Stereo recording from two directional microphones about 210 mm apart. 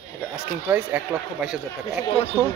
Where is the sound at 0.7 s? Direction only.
10° right (ahead or behind).